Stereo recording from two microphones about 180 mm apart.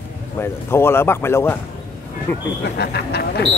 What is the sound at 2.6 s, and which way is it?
Speech, 65° left (ahead or behind).